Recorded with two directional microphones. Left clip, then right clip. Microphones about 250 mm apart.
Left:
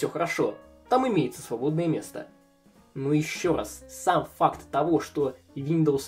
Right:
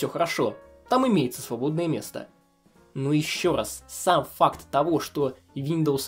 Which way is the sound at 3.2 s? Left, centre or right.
Right.